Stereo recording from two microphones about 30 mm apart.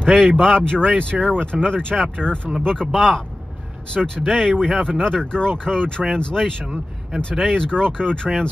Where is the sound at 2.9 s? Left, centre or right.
Centre.